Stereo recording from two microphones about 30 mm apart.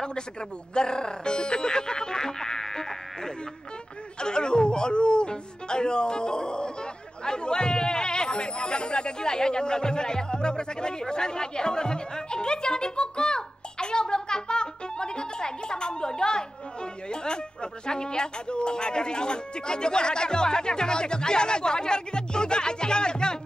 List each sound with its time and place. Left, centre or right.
0.7 s speech: left
4.2 s speech: left